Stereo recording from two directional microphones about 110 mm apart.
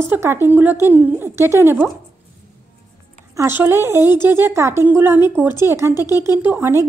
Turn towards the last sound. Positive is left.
turn(degrees=-20)  # may be behind; listen again after turning